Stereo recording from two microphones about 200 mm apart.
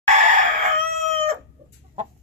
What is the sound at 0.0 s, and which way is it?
Crowing, 35° right (ahead or behind).